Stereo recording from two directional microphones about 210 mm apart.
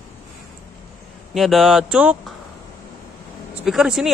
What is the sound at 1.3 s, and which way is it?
Speech, centre (ahead or behind).